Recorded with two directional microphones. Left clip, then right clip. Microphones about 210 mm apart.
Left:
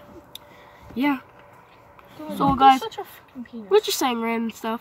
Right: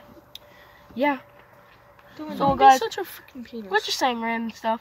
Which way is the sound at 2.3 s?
10° left (ahead or behind).